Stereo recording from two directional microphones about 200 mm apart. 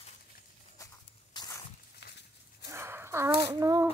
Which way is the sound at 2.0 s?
60° left (ahead or behind).